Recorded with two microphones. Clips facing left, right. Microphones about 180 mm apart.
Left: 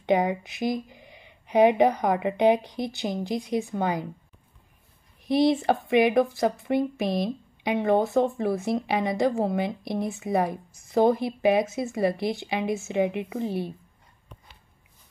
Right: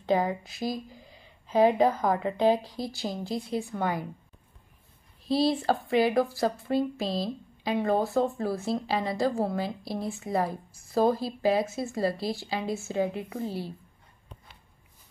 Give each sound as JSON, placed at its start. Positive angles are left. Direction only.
{"t": 0.0, "sound": "a woman's voice", "side_deg": 20}
{"t": 5.2, "sound": "a woman's voice", "side_deg": 20}